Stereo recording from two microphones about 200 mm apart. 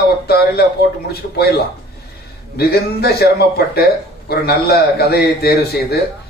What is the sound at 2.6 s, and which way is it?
Speech, 55° left (ahead or behind).